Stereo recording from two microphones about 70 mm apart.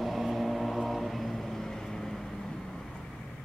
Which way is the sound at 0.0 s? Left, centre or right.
Centre.